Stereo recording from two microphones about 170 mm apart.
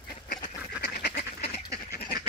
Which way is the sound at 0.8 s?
75° left (ahead or behind).